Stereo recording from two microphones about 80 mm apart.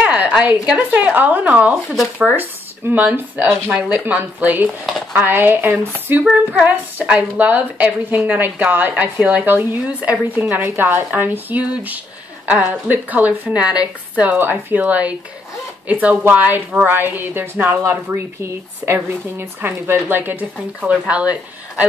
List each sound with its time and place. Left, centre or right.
0.0 s a woman's voice: centre
2.9 s a woman's voice: right